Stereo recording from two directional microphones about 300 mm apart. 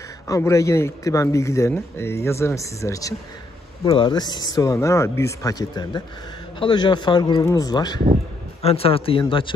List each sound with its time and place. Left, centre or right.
0.3 s a man's voice: centre